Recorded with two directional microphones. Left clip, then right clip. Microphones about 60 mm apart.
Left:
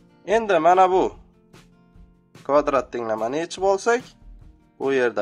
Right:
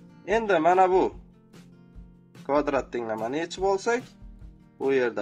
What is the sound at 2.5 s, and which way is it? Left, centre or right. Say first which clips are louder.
Speech: left 5 dB; left.